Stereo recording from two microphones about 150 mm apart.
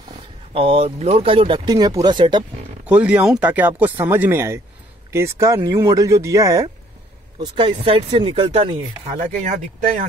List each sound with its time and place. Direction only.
0.5 s speech: 40° right (ahead or behind)
2.9 s speech: 10° right (ahead or behind)
7.3 s speech: 35° right (ahead or behind); by 10.0 s 50° right (ahead or behind)